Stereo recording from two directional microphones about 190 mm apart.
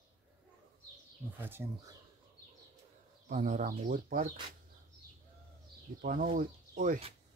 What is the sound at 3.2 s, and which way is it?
Speech, 40° right (ahead or behind).